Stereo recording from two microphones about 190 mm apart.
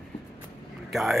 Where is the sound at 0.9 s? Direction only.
Centre (ahead or behind).